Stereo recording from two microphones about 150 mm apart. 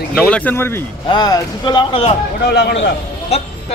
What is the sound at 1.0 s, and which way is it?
Speech, 25° left (ahead or behind).